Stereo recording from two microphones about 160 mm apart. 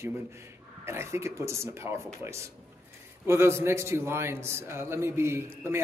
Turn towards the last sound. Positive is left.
turn(degrees=-15)  # may be behind; listen again after turning